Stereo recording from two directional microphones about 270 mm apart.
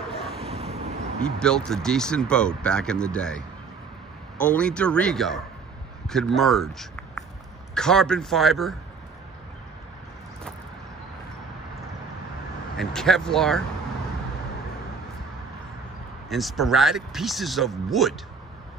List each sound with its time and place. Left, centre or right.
0.1 s vehicle: centre
0.4 s a sound: right
1.2 s speech: centre
12.7 s speech: centre
16.3 s speech: centre